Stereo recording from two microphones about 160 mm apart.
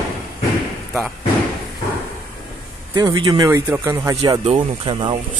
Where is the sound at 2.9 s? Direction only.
25° right (ahead or behind).